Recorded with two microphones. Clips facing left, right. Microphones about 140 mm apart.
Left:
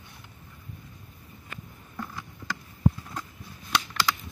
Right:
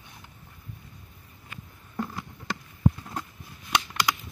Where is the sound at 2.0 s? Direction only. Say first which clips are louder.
Right 3 dB; 25° right (ahead or behind).